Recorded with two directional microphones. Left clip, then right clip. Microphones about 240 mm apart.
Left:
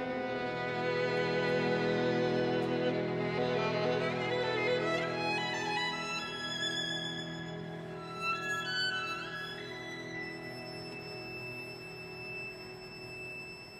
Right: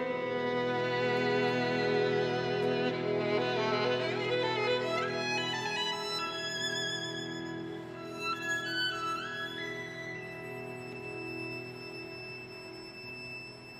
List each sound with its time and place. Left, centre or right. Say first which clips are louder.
0.3 s music: right 4 dB; right